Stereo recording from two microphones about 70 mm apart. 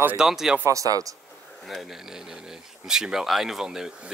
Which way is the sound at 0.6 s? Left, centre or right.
Right.